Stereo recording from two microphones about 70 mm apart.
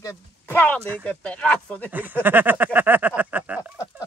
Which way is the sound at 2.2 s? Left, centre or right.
Right.